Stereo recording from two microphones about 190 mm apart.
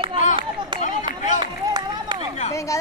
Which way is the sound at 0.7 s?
40° left (ahead or behind).